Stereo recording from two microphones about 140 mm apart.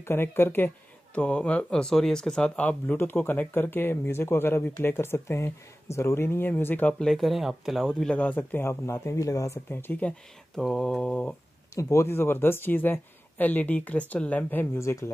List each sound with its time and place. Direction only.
0.0 s speech: 15° left (ahead or behind)
11.7 s speech: 20° left (ahead or behind)